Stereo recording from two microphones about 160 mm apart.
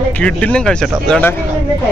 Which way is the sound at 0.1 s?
5° left (ahead or behind).